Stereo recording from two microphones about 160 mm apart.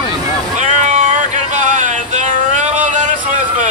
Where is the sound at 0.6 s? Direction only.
50° right (ahead or behind).